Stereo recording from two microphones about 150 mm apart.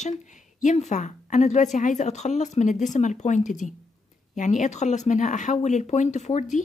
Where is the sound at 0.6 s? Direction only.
55° left (ahead or behind).